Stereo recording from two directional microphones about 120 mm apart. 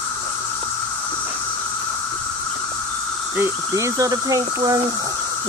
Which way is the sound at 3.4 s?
25° right (ahead or behind).